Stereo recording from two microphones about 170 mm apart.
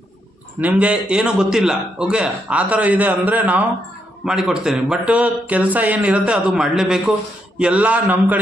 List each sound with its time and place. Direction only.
0.6 s a man's voice: 10° right (ahead or behind)